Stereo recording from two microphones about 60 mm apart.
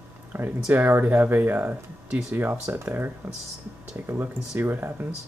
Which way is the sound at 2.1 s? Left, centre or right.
Centre.